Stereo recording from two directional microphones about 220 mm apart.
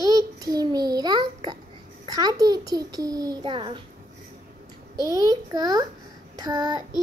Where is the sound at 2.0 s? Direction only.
15° right (ahead or behind).